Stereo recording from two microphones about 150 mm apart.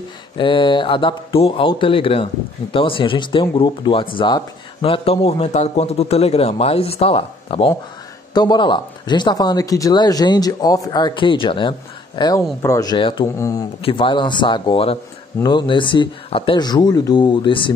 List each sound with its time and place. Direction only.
0.4 s a man's voice: 35° left (ahead or behind)
12.6 s speech: 20° left (ahead or behind)
12.9 s a man's voice: 35° left (ahead or behind)
13.4 s speech: 20° left (ahead or behind)
13.8 s a man's voice: 35° left (ahead or behind)